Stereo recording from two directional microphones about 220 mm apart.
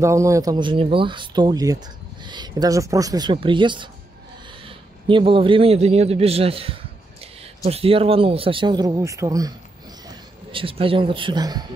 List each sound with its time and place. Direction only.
0.0 s a man's voice: 15° right (ahead or behind)